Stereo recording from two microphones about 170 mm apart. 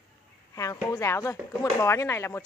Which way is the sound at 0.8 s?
15° left (ahead or behind).